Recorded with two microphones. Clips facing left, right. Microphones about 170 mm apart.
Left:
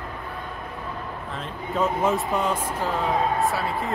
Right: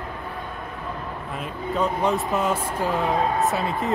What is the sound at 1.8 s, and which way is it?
Speech, centre (ahead or behind).